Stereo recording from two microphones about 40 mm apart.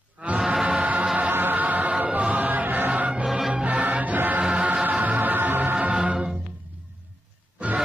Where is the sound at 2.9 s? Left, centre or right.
Right.